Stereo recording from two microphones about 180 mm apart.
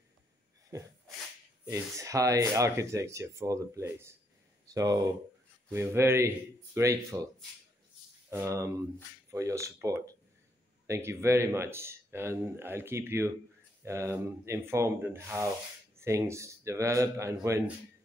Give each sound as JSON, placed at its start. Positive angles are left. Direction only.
{"t": 1.7, "sound": "speech", "side_deg": -15}
{"t": 8.3, "sound": "speech", "side_deg": -15}